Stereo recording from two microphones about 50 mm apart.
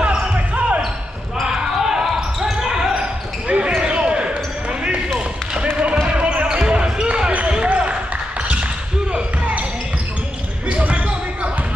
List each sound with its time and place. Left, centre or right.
0.0 s basketball bounce: right
1.4 s basketball bounce: centre
3.4 s basketball bounce: right
6.0 s basketball bounce: right
10.7 s basketball bounce: right